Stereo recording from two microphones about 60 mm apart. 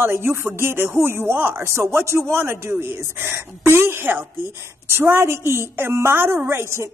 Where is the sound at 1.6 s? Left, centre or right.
Right.